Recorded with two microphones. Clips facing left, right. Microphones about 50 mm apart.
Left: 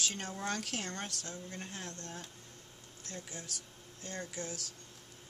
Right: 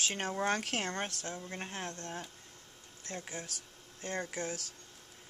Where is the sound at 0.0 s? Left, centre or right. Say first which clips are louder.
Right 5 dB; right.